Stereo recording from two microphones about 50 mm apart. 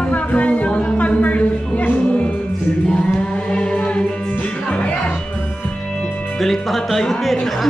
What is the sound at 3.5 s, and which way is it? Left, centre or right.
Music, centre.